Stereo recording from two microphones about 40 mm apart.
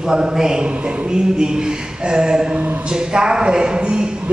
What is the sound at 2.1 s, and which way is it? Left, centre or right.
A woman's voice, centre.